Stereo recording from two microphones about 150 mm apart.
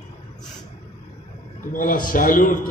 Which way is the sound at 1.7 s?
65° left (ahead or behind).